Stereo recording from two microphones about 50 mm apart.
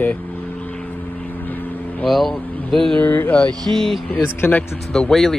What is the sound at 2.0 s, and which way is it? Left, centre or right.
Speech, centre.